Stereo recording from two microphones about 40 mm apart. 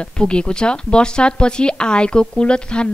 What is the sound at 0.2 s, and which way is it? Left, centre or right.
Speech, left.